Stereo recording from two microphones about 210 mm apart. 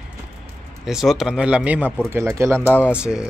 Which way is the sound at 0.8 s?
Centre (ahead or behind).